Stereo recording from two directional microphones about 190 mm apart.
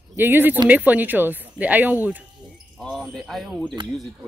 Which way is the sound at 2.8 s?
Centre (ahead or behind).